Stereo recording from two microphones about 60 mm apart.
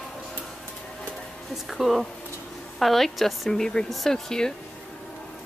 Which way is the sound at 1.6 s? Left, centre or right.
Centre.